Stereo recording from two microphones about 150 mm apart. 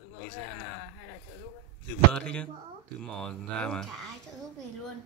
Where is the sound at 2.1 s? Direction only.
5° left (ahead or behind).